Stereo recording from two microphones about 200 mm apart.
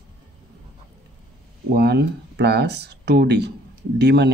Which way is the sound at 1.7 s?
55° right (ahead or behind).